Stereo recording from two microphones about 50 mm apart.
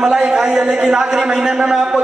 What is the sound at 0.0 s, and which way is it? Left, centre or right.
A man's voice, centre.